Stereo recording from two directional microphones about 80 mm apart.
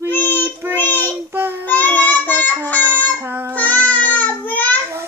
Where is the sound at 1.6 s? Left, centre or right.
Left.